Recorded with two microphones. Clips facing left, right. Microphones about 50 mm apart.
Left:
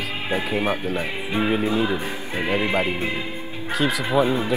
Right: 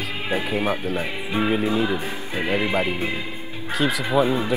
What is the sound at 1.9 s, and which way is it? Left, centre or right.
Music, left.